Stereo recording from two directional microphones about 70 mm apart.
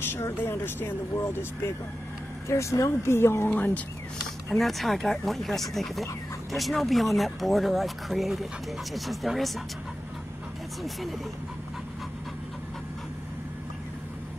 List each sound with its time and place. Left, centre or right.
0.0 s speech: left
2.4 s speech: left
3.4 s speech: left
4.5 s speech: centre
10.8 s speech: centre